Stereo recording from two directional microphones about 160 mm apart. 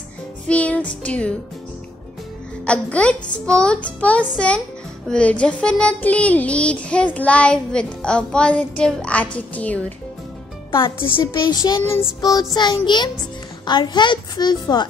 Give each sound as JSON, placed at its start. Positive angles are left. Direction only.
{"t": 0.5, "sound": "child singing", "side_deg": 10}
{"t": 2.6, "sound": "child singing", "side_deg": 5}
{"t": 10.7, "sound": "a woman's voice", "side_deg": 30}
{"t": 11.9, "sound": "child singing", "side_deg": 20}